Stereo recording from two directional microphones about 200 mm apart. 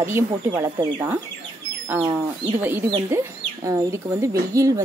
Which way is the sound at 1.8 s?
10° right (ahead or behind).